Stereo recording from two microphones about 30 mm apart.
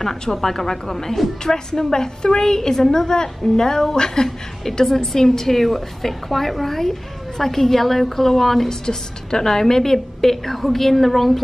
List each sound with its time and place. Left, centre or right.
0.3 s a woman's voice: centre
4.8 s a woman's voice: centre
8.8 s a woman's voice: left; by 11.3 s centre